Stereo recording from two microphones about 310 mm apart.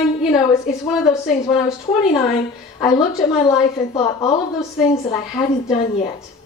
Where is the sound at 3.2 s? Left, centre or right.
Centre.